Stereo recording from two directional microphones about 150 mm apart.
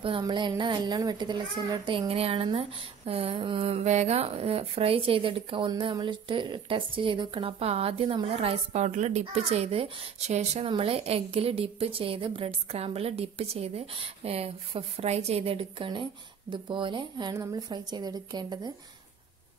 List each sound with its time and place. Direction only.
0.2 s a woman's voice: 30° right (ahead or behind)